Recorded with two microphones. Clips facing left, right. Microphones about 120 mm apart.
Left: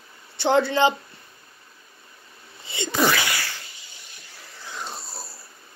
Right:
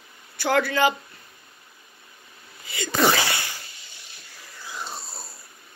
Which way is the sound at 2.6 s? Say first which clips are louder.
Left 2 dB; 25° left (ahead or behind).